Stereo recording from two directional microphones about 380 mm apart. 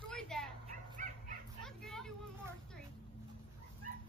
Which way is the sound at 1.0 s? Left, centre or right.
Right.